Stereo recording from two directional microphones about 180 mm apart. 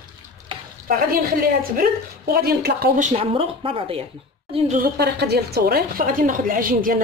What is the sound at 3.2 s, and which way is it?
Speech, 30° right (ahead or behind).